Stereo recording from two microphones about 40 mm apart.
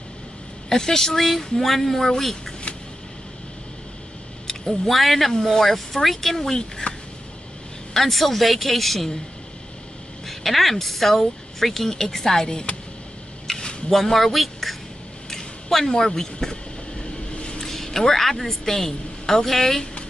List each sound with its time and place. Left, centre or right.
0.7 s a woman's voice: centre
4.5 s speech: centre
5.3 s a woman's voice: centre
6.8 s a sound: left
7.9 s a woman's voice: centre
10.2 s a woman's voice: centre
13.5 s a sound: centre
14.1 s speech: centre
17.4 s vehicle: left
17.6 s a woman's voice: centre